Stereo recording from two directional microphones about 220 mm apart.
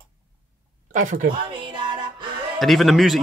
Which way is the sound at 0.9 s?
35° right (ahead or behind).